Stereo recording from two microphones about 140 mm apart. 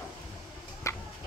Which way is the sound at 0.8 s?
20° left (ahead or behind).